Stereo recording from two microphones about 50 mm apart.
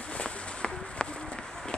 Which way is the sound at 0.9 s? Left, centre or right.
Centre.